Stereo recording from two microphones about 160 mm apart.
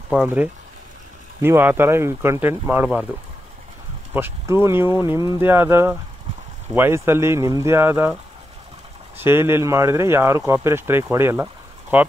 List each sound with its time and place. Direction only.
0.1 s speech: 10° right (ahead or behind)
4.1 s speech: 15° right (ahead or behind)